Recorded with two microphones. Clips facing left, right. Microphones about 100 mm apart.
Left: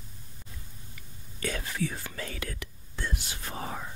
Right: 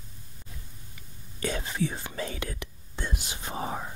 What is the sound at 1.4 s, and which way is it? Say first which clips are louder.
Whispering: right 2 dB; 25° right (ahead or behind).